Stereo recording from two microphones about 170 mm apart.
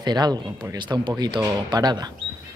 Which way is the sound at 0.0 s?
25° right (ahead or behind).